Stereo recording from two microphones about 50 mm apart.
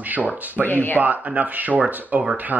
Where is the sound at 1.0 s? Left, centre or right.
Right.